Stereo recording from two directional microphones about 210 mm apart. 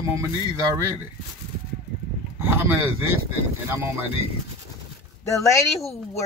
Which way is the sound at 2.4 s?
10° right (ahead or behind).